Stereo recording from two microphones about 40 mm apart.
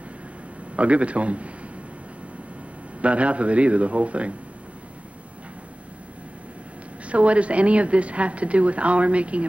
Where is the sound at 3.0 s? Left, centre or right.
Right.